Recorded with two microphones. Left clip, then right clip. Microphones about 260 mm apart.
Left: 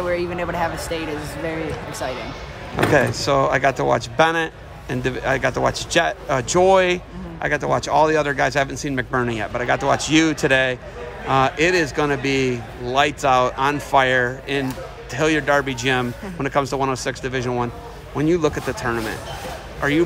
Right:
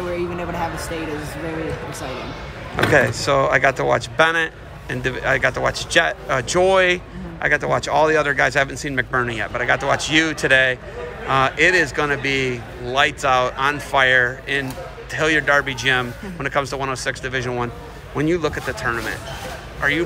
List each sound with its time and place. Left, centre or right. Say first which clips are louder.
2.8 s speech: right 1 dB; left